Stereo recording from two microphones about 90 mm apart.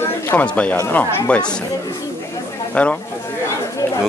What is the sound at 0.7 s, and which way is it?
Speech, 25° left (ahead or behind).